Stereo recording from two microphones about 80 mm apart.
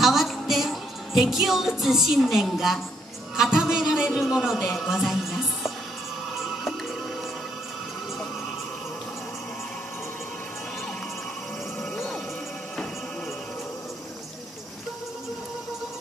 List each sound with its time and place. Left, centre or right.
0.0 s music: centre
3.3 s speech: centre
11.8 s music: centre